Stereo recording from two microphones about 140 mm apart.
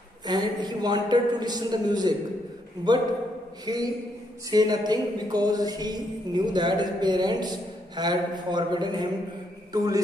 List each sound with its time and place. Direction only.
0.3 s a man's voice: 30° right (ahead or behind)
3.7 s a man's voice: 30° right (ahead or behind)
4.5 s a sound: 30° right (ahead or behind)
9.7 s a man's voice: 25° right (ahead or behind)